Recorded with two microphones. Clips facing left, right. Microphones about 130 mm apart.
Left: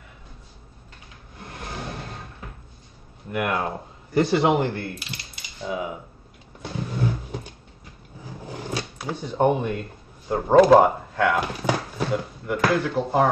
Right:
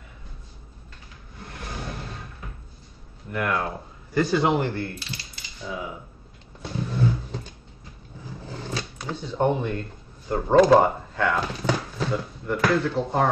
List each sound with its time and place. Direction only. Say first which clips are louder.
3.3 s typing: left 1 dB; 20° left (ahead or behind)
6.6 s a sound: right 1 dB; 10° left (ahead or behind)
8.5 s speech: left 2 dB; 15° left (ahead or behind)